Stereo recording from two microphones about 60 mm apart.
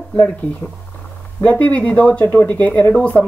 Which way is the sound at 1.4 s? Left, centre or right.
Left.